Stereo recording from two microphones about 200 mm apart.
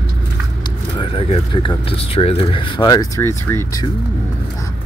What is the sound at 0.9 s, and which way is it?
Speech, 25° left (ahead or behind).